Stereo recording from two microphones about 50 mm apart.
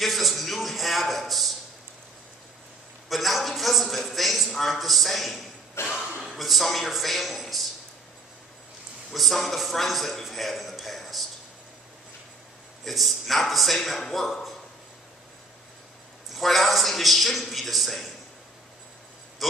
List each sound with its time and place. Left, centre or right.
0.0 s a sound: centre
3.1 s a man's voice: centre
5.8 s throat clearing: left
6.2 s a man's voice: centre
9.1 s a man's voice: centre
12.8 s a man's voice: centre
16.3 s a man's voice: centre